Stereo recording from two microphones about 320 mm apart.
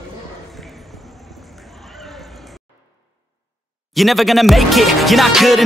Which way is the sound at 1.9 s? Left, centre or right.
Centre.